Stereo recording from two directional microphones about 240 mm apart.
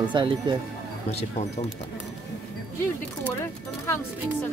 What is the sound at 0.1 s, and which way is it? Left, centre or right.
Speech, centre.